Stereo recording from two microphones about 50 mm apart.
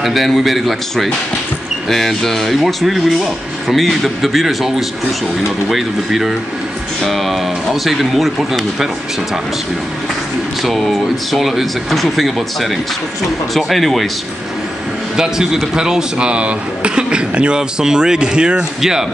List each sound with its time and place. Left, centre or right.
0.0 s speech: centre
10.6 s speech: centre
15.1 s speech: centre